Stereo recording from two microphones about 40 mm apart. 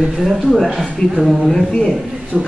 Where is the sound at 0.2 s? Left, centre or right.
Centre.